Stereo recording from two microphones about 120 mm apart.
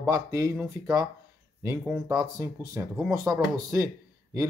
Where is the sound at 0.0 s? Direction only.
25° right (ahead or behind).